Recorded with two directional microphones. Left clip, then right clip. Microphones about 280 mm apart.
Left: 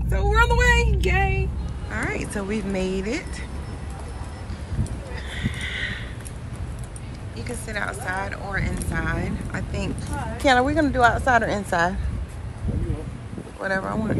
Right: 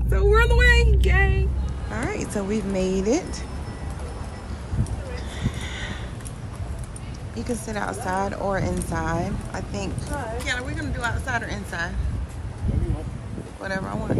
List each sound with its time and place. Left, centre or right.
0.1 s a woman's voice: centre
5.3 s a sound: centre
7.3 s speech: centre
10.4 s a woman's voice: centre
13.6 s a woman's voice: centre